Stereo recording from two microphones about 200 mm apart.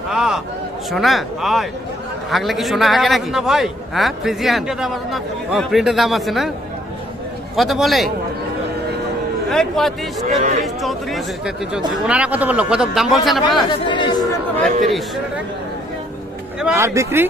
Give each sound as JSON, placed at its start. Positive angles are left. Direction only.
{"t": 0.1, "sound": "a man's voice", "side_deg": 0}
{"t": 7.5, "sound": "a man's voice", "side_deg": 0}
{"t": 9.5, "sound": "a man's voice", "side_deg": 0}
{"t": 13.7, "sound": "speech", "side_deg": 25}
{"t": 14.6, "sound": "a man's voice", "side_deg": 0}
{"t": 16.6, "sound": "speech", "side_deg": -15}